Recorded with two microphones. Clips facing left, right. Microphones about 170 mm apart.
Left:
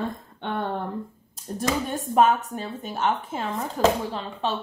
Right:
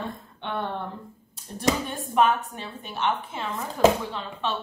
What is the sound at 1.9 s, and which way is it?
A woman's voice, 45° left (ahead or behind).